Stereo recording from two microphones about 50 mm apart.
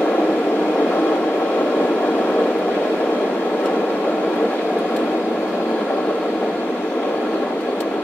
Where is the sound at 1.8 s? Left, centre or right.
Left.